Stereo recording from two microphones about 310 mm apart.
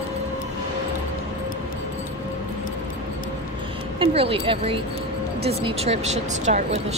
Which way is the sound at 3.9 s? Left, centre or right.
Centre.